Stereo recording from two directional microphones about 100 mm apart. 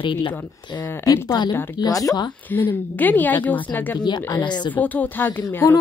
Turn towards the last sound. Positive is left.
turn(degrees=20)  # may be behind; listen again after turning